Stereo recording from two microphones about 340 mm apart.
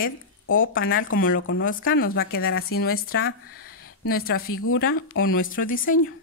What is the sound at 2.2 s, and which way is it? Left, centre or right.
Speech, left.